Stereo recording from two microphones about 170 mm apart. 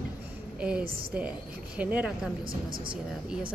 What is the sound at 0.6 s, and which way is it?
A woman's voice, 5° right (ahead or behind).